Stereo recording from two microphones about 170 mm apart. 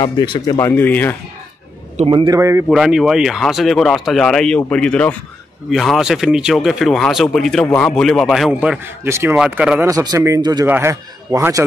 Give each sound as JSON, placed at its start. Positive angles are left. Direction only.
{"t": 0.0, "sound": "speech", "side_deg": 25}
{"t": 0.6, "sound": "speech", "side_deg": 10}
{"t": 2.0, "sound": "speech", "side_deg": -25}
{"t": 2.7, "sound": "speech", "side_deg": 0}
{"t": 9.8, "sound": "a man's voice", "side_deg": -20}